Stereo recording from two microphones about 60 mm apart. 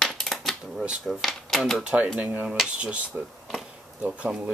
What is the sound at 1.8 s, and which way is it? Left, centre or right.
Speech, centre.